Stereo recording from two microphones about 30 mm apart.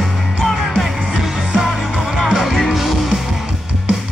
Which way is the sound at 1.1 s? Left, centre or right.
Centre.